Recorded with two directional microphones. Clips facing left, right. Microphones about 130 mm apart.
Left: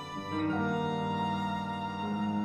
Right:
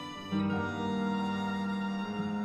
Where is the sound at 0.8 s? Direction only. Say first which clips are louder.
Even; 50° left (ahead or behind).